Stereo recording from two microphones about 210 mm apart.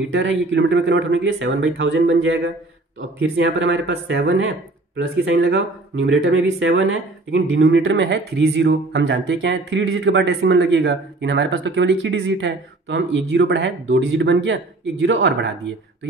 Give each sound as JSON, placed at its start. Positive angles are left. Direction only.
{"t": 0.1, "sound": "speech", "side_deg": -60}
{"t": 3.2, "sound": "speech", "side_deg": -60}